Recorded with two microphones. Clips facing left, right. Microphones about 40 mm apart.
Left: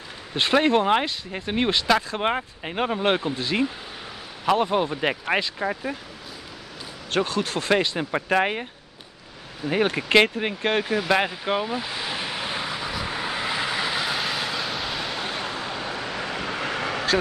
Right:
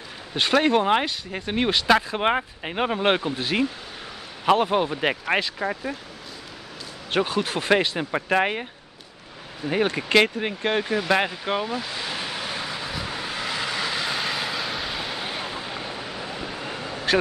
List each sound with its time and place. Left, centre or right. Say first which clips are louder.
0.4 s speech: even; centre
7.1 s speech: right 1 dB; centre
9.7 s a sound: left 1 dB; centre
16.1 s vehicle: left 3 dB; left